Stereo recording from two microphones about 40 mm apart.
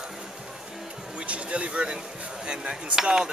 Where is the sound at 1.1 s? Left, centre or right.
Right.